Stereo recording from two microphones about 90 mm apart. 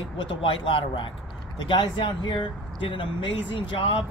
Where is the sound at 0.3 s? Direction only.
75° left (ahead or behind).